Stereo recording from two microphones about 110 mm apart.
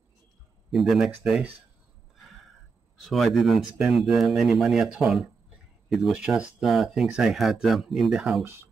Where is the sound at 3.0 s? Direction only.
Centre (ahead or behind).